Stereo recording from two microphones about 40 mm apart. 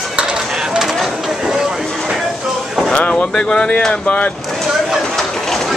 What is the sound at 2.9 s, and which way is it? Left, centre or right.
Speech, left.